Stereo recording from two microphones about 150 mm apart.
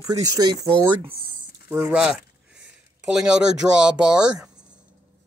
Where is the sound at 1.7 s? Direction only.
10° right (ahead or behind).